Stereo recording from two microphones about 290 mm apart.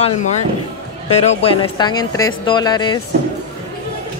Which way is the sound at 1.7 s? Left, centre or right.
Centre.